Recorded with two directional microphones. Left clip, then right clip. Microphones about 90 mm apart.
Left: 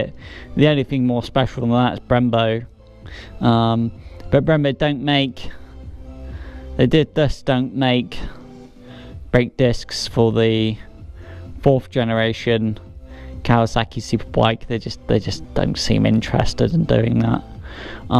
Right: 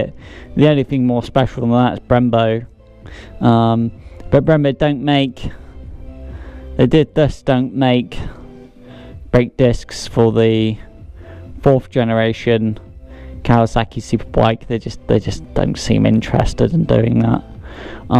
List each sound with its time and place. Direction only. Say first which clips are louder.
0.0 s speech: right 3 dB; 35° right (ahead or behind)
6.8 s speech: right 3 dB; 35° right (ahead or behind)